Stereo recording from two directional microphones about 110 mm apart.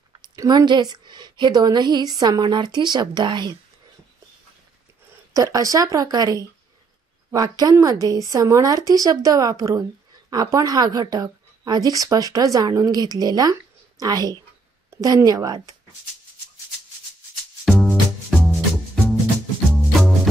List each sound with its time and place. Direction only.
0.2 s speech: 40° right (ahead or behind)
5.3 s speech: 30° right (ahead or behind)
17.6 s music: 5° right (ahead or behind)
19.7 s music: 5° left (ahead or behind)